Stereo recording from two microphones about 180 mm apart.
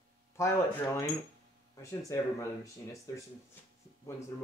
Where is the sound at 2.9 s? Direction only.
20° left (ahead or behind).